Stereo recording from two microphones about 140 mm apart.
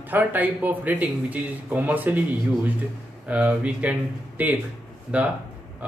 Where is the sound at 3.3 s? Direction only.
10° right (ahead or behind).